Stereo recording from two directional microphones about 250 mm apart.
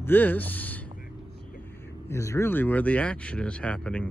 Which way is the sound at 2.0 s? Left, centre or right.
Centre.